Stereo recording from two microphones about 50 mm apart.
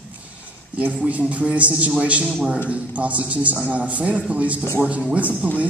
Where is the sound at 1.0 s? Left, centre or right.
Right.